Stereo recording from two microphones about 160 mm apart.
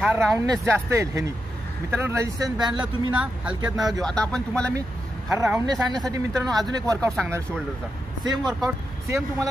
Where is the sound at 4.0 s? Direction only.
5° left (ahead or behind).